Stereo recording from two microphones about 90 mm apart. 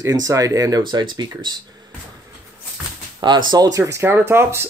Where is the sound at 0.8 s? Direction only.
55° right (ahead or behind).